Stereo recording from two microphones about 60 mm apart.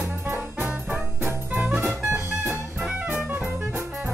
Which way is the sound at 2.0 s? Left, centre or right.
Right.